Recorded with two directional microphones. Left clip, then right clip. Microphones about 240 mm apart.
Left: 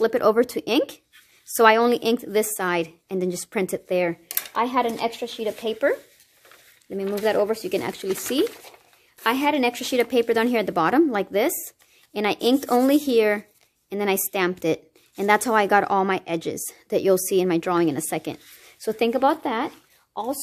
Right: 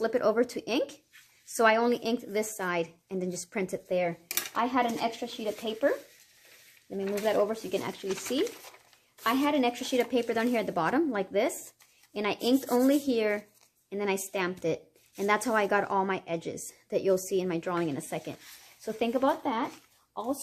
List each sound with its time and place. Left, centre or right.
0.0 s a woman's voice: left